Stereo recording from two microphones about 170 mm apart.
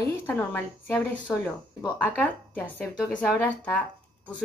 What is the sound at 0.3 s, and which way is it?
Speech, 10° left (ahead or behind).